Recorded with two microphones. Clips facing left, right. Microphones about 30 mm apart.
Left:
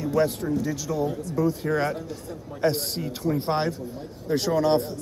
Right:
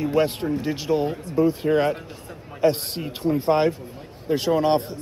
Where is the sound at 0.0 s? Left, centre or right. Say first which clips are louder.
Right 2 dB; right.